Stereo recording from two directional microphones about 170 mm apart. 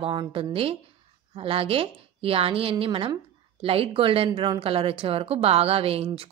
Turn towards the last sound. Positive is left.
turn(degrees=-35)  # may be behind; listen again after turning